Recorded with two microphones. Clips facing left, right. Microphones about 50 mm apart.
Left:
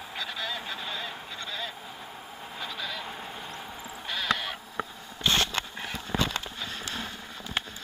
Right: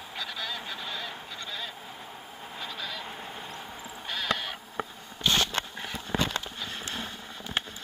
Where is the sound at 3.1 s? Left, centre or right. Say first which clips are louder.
Left 1 dB; centre.